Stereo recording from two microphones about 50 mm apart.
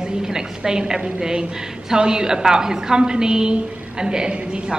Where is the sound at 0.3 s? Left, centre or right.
Centre.